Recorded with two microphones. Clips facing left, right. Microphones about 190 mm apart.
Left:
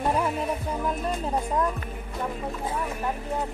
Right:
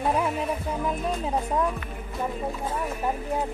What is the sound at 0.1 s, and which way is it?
Speech, centre (ahead or behind).